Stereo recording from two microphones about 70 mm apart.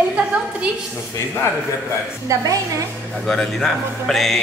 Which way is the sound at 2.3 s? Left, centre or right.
Right.